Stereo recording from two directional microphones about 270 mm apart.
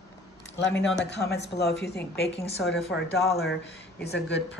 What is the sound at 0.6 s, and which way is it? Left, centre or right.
Speech, left.